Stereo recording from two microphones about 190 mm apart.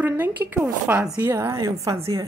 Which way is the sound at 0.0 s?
10° right (ahead or behind).